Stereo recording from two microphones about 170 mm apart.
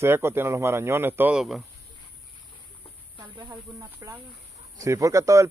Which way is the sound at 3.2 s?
25° right (ahead or behind).